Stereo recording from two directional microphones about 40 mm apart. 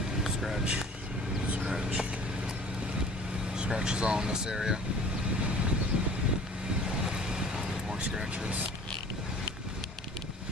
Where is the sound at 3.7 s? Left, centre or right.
Right.